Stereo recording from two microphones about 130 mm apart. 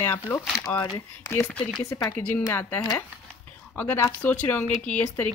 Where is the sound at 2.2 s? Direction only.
15° left (ahead or behind).